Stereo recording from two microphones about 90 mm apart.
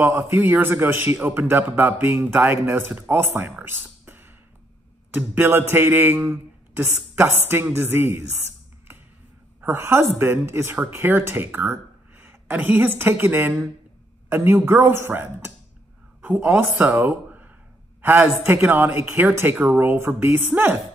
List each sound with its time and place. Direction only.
0.3 s speech: 20° right (ahead or behind)
9.7 s speech: 30° right (ahead or behind)
16.2 s a sound: 20° right (ahead or behind)
16.4 s speech: 15° right (ahead or behind)